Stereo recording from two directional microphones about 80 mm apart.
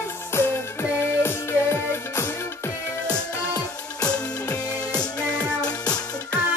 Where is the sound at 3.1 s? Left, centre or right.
Left.